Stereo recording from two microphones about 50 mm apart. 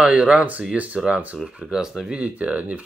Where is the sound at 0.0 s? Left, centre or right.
Right.